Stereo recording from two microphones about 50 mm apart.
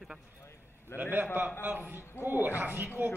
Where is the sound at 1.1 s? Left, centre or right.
Right.